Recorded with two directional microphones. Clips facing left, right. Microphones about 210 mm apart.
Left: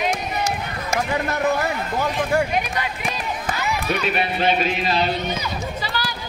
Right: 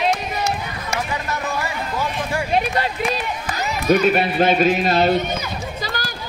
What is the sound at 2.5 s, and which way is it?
A man's voice, 35° right (ahead or behind).